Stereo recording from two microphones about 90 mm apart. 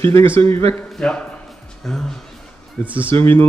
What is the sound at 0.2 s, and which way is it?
Speech, 90° right.